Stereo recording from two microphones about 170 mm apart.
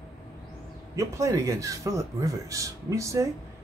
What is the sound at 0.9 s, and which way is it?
Speech, 20° right (ahead or behind).